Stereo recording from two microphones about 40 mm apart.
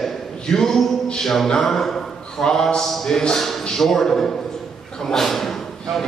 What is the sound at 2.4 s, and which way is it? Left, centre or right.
A man's voice, centre.